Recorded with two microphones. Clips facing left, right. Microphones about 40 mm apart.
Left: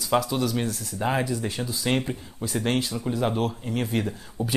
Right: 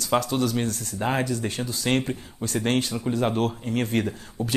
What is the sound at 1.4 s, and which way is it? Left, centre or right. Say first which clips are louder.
Speech: right 1 dB; centre.